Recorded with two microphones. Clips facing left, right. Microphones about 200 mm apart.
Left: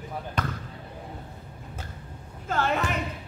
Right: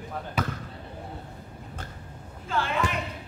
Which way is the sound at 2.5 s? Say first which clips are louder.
Left 1 dB; 45° left (ahead or behind).